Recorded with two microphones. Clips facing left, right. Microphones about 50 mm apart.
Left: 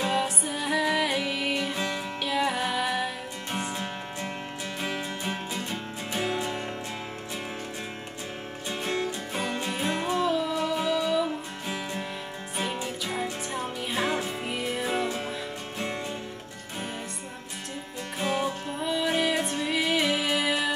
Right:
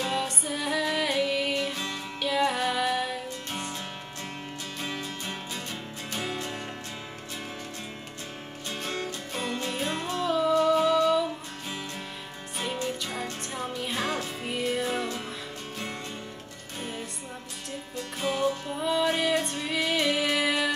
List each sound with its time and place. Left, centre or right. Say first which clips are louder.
0.0 s music: left 3 dB; centre
4.8 s music: left 3 dB; centre
8.6 s music: left 4 dB; left
10.7 s music: right 4 dB; centre
12.5 s music: even; centre
18.2 s music: right 1 dB; centre
18.8 s music: even; centre